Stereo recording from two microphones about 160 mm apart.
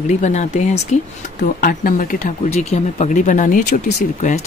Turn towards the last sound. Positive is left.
turn(degrees=50)  # may be behind; listen again after turning